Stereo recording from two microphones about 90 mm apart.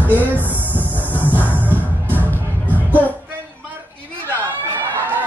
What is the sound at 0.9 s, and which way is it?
Train, 20° left (ahead or behind).